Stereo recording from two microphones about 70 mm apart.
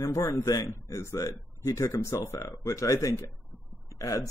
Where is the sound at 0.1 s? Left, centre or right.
Left.